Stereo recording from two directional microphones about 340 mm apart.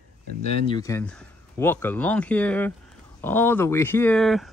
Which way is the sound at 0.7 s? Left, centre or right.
Centre.